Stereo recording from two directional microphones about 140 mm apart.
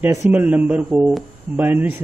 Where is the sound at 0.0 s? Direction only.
15° right (ahead or behind).